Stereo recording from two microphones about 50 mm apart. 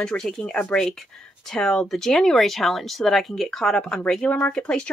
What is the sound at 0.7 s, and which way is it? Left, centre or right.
Speech, centre.